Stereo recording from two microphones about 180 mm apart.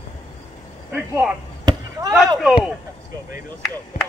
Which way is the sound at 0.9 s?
10° right (ahead or behind).